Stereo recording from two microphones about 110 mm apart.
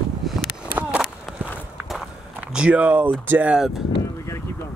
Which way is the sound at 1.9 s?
5° right (ahead or behind).